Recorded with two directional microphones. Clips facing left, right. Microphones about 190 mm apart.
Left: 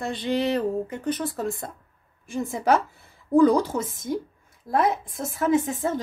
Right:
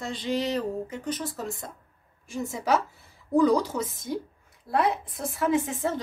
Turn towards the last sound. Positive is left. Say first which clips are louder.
# left 3 dB
turn(degrees=45)  # may be behind; listen again after turning